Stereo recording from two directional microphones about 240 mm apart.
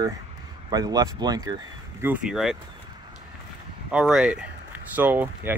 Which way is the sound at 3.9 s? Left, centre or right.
Centre.